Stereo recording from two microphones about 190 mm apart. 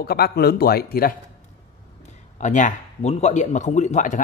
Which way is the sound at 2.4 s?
40° left (ahead or behind).